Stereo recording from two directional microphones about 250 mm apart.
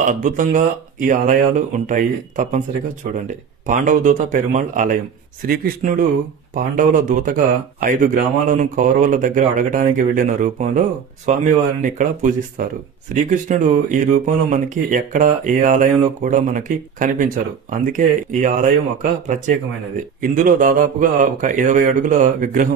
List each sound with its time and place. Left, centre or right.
0.0 s speech: right